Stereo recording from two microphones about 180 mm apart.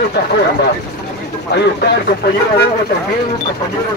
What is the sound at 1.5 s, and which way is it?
Speech, 70° left (ahead or behind).